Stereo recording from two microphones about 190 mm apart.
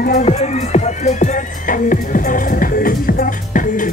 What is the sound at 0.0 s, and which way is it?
Music, 40° left (ahead or behind).